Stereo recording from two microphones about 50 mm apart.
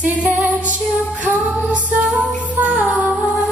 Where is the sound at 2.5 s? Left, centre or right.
Right.